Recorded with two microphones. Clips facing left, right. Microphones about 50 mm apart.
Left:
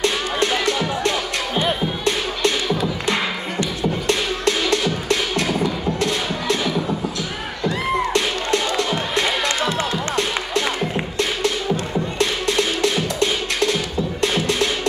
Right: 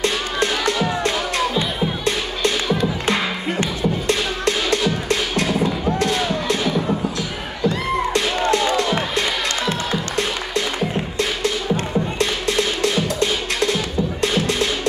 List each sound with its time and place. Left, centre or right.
5.9 s music: right
8.4 s music: right